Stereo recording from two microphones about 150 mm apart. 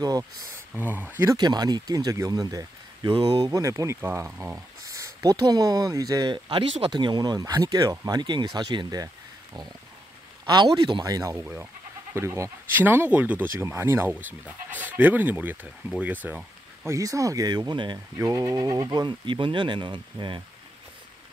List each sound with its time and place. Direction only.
0.2 s speech: 15° right (ahead or behind)
1.3 s speech: 25° right (ahead or behind); by 16.9 s 10° right (ahead or behind)
16.9 s speech: 20° right (ahead or behind)